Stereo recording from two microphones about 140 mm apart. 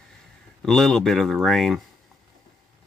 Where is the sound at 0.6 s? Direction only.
Centre (ahead or behind).